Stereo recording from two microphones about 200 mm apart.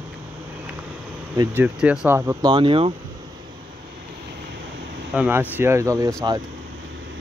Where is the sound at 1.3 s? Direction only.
10° right (ahead or behind).